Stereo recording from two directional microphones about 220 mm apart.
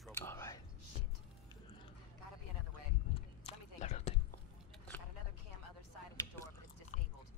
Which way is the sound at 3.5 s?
30° left (ahead or behind).